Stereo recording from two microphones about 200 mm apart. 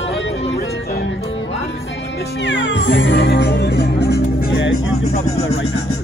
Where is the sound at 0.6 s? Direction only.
60° left (ahead or behind).